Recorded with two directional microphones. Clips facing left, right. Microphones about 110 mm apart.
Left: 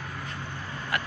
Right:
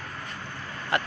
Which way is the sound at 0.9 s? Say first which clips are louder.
Right 4 dB; 30° right (ahead or behind).